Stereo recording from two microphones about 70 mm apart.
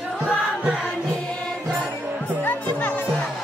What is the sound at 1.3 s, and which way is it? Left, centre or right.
Music, centre.